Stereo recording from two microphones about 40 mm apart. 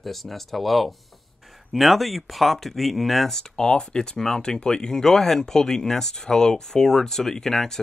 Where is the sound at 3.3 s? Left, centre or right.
Centre.